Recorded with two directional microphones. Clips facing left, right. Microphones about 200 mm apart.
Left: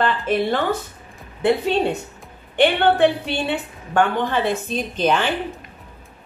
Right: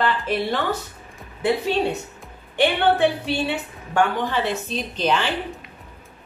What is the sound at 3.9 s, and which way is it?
A woman's voice, 50° left (ahead or behind).